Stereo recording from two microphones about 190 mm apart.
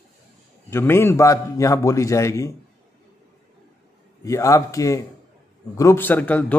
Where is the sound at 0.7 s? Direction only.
10° left (ahead or behind).